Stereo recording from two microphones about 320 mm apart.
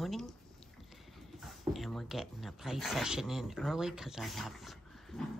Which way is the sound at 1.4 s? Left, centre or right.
Centre.